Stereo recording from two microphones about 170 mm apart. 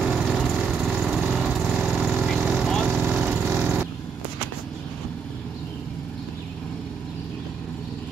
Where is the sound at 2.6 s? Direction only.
Centre (ahead or behind).